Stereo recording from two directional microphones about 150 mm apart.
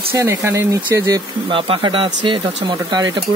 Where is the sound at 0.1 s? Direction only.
15° right (ahead or behind).